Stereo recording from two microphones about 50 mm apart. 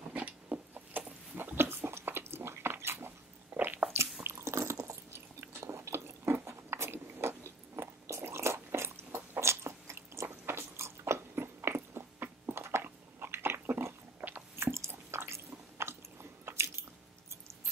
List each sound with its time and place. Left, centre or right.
0.1 s a sound: right
0.7 s biting: right
4.2 s biting: right
14.2 s squish: right
14.6 s chewing: right